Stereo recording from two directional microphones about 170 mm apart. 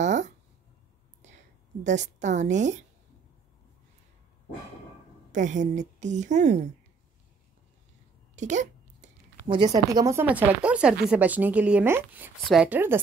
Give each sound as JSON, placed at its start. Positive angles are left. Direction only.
{"t": 0.0, "sound": "a sound", "side_deg": -45}
{"t": 1.8, "sound": "a woman's voice", "side_deg": -45}
{"t": 5.3, "sound": "a woman's voice", "side_deg": -45}
{"t": 8.4, "sound": "a sound", "side_deg": -45}
{"t": 9.5, "sound": "a woman's voice", "side_deg": -25}
{"t": 10.2, "sound": "speech", "side_deg": -10}